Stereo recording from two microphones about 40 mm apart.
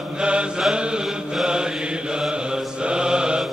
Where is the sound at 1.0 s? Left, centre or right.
Centre.